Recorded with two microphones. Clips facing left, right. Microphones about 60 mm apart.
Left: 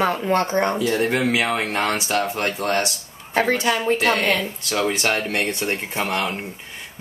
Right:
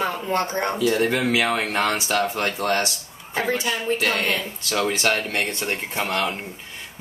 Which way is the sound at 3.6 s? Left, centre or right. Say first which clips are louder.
Left 5 dB; left.